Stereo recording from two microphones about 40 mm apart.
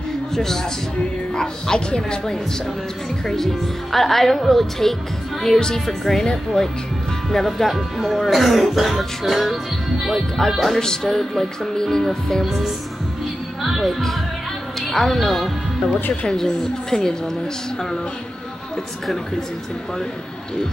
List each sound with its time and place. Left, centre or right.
0.3 s speech: centre
1.3 s music: centre
3.9 s a woman's voice: centre
5.9 s music: centre
7.3 s a woman's voice: centre
10.8 s music: centre
12.4 s a woman's voice: centre
16.3 s music: centre